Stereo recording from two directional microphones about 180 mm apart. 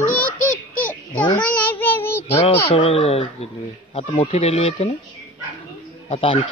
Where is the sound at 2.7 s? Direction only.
35° left (ahead or behind).